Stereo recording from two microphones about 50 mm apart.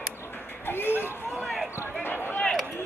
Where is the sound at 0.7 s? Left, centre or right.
Left.